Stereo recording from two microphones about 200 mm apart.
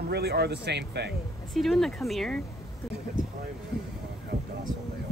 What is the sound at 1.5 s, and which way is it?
Speech, centre (ahead or behind).